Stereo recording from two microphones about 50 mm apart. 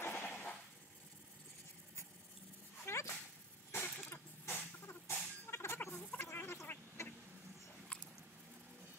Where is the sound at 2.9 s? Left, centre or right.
Left.